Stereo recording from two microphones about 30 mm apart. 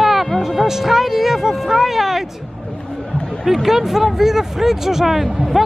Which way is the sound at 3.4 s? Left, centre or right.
Centre.